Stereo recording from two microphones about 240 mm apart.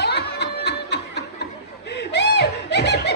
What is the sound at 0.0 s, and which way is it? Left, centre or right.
Snicker, left.